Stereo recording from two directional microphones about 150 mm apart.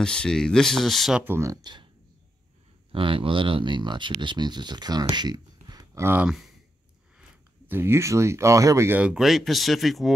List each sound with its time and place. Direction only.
0.0 s speech: 5° left (ahead or behind)
1.2 s speech: 15° right (ahead or behind)
2.9 s speech: 35° right (ahead or behind)
5.1 s a sound: 30° right (ahead or behind)
6.0 s speech: 10° right (ahead or behind)
7.2 s speech: 15° right (ahead or behind)